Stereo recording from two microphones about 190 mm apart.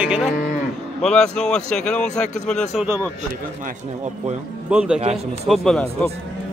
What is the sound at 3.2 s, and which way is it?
A man's voice, 40° right (ahead or behind).